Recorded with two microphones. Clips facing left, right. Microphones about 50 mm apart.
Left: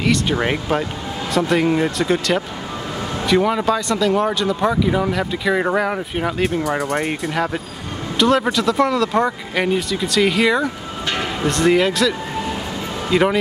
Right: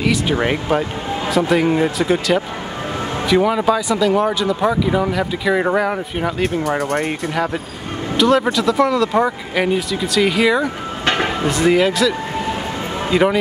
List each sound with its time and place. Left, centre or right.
0.0 s a man's voice: centre
6.8 s speech: left
7.1 s a man's voice: centre